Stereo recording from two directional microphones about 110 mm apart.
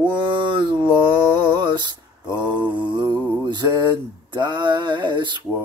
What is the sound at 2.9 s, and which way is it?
Mantra, 45° right (ahead or behind).